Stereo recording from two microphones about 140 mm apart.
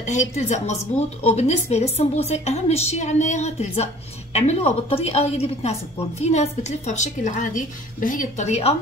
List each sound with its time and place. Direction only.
0.0 s a woman's voice: 60° left (ahead or behind)